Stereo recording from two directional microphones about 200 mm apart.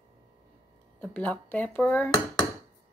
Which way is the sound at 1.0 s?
5° left (ahead or behind).